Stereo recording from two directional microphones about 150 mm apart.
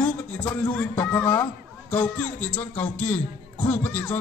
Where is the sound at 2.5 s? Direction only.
10° left (ahead or behind).